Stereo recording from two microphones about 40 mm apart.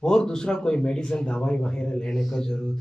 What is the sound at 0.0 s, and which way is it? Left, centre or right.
Speech, centre.